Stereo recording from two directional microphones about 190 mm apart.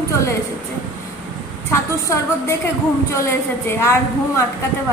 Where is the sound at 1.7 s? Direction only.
15° left (ahead or behind).